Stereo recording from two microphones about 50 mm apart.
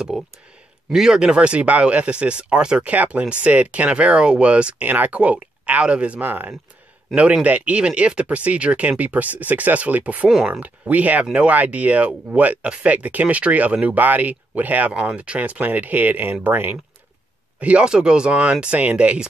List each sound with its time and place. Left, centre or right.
0.1 s speech: centre
2.8 s speech: right
4.8 s speech: right
6.2 s speech: right
17.6 s speech: right